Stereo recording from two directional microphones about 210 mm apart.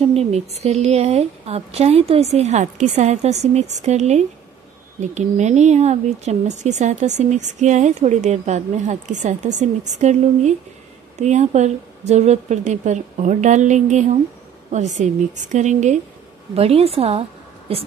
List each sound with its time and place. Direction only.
0.1 s a woman's voice: 30° right (ahead or behind)